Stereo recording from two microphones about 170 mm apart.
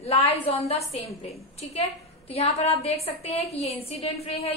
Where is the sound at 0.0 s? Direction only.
35° left (ahead or behind).